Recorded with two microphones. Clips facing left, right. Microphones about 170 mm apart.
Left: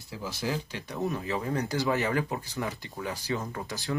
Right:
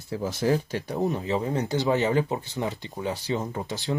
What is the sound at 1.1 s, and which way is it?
Speech, 25° right (ahead or behind).